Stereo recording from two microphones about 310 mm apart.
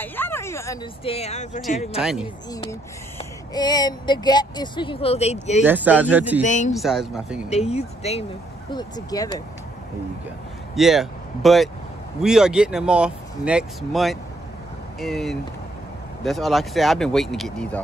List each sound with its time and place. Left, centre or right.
0.0 s speech: centre
2.0 s speech: centre
3.2 s speech: centre
5.7 s speech: centre
6.4 s speech: left
6.7 s speech: centre
7.4 s speech: centre
10.8 s speech: centre